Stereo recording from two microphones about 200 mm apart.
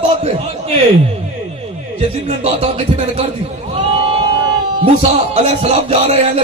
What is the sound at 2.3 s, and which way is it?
Speech, 30° right (ahead or behind).